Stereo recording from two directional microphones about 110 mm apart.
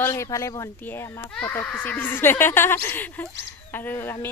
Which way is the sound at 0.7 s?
15° left (ahead or behind).